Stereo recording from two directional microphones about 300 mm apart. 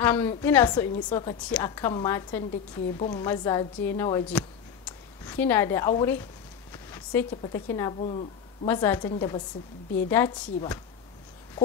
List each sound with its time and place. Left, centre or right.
0.0 s a woman's voice: centre